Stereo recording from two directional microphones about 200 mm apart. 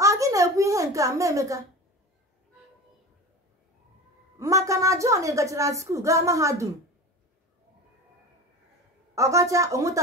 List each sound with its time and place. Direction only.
0.0 s a sound: 15° right (ahead or behind)
4.4 s a woman's voice: 15° right (ahead or behind)
9.1 s a woman's voice: 15° right (ahead or behind)